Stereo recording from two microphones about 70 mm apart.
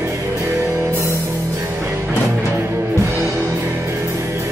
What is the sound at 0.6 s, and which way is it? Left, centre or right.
Music, right.